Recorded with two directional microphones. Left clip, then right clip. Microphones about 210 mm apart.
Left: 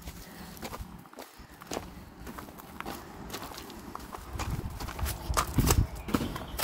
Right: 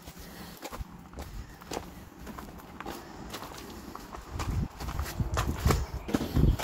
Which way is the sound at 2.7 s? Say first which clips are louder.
Even; 45° left (ahead or behind).